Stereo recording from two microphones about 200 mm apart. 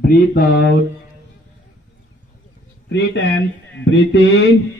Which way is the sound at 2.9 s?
60° left (ahead or behind).